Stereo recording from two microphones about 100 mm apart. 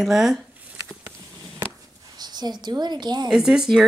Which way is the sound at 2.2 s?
45° right (ahead or behind).